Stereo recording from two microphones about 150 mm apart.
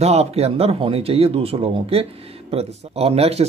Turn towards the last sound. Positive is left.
turn(degrees=-45)  # may be behind; listen again after turning